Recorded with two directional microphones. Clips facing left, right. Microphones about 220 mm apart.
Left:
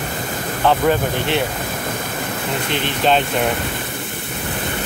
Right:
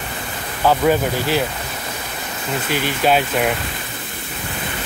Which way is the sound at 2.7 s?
5° right (ahead or behind).